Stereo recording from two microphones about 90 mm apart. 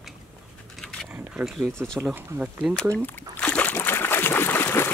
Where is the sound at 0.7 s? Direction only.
Centre (ahead or behind).